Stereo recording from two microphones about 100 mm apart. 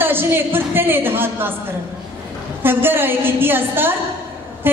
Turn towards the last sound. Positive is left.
turn(degrees=-20)  # may be behind; listen again after turning